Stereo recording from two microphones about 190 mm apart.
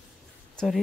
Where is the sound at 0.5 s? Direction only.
Centre (ahead or behind).